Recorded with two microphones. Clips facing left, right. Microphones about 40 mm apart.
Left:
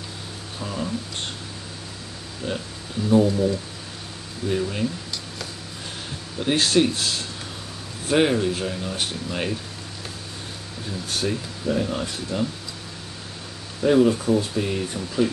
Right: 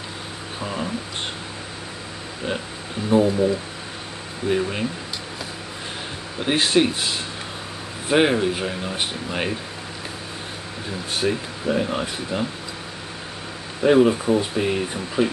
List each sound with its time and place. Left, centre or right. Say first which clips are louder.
0.6 s a sound: right 2 dB; right
3.1 s speech: right 1 dB; centre
6.4 s speech: right 1 dB; right
10.9 s speech: right 3 dB; right
13.8 s speech: right 2 dB; right